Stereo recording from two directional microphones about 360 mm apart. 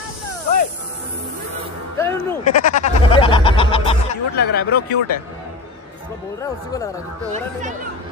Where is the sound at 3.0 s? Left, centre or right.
Centre.